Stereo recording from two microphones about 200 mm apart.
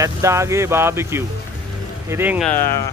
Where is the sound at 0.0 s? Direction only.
15° right (ahead or behind).